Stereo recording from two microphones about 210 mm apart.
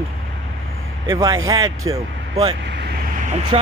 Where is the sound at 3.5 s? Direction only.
30° right (ahead or behind).